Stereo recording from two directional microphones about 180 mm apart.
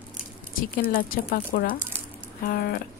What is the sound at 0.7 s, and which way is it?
Speech, 55° left (ahead or behind).